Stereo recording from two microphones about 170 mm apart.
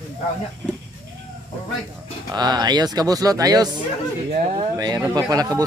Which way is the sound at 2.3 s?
25° right (ahead or behind).